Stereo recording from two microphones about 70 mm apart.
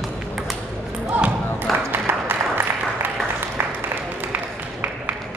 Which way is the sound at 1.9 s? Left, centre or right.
Right.